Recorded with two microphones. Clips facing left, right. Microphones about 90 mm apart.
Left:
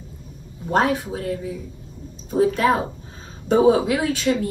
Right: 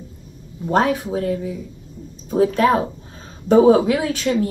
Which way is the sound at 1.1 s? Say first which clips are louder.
Right 5 dB; 35° right (ahead or behind).